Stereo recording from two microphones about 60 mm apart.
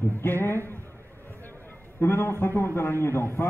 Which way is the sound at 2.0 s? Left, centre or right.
Left.